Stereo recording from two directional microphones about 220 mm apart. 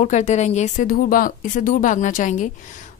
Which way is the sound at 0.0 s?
35° left (ahead or behind).